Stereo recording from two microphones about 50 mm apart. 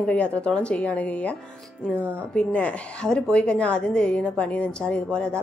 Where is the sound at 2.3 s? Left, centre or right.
Left.